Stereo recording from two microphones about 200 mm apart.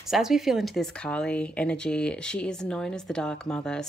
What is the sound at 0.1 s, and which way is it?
Speech, centre (ahead or behind).